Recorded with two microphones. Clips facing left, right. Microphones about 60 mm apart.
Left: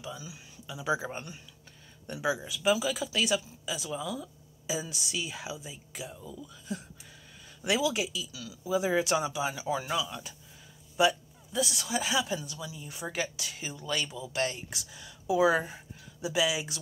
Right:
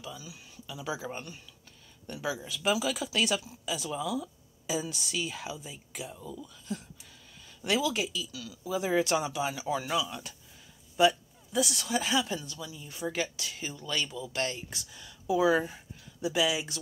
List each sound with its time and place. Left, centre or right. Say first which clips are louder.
0.0 s speech: left 2 dB; left
2.7 s speech: left 1 dB; centre
11.5 s speech: right 2 dB; centre; by 15.7 s left
15.7 s speech: left 2 dB; centre